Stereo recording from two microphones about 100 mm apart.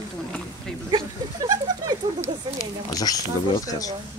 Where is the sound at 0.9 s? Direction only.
40° right (ahead or behind).